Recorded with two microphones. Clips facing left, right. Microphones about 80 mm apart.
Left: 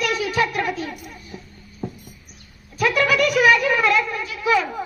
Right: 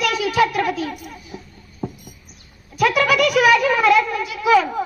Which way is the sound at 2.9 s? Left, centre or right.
Centre.